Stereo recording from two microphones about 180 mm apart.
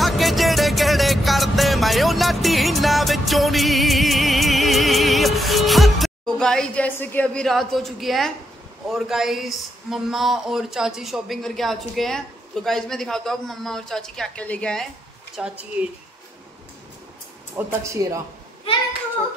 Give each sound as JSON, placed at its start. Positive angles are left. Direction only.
{"t": 0.0, "sound": "music", "side_deg": 0}
{"t": 8.8, "sound": "speech", "side_deg": 0}
{"t": 15.3, "sound": "speech", "side_deg": -5}
{"t": 17.6, "sound": "speech", "side_deg": -15}